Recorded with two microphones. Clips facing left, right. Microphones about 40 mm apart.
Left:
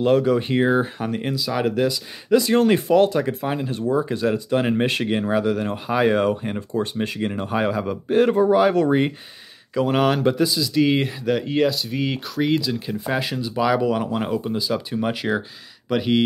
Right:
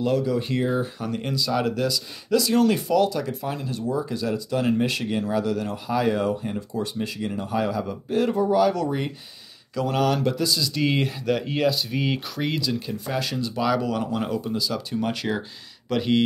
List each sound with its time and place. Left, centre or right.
0.0 s speech: left
1.3 s speech: centre; by 9.1 s left
9.8 s speech: left
10.5 s speech: centre
12.8 s speech: centre